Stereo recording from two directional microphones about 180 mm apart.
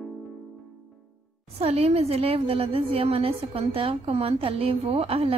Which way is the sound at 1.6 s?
35° right (ahead or behind).